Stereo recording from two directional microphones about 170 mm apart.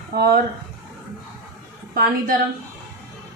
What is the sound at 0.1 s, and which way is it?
Speech, 70° right (ahead or behind).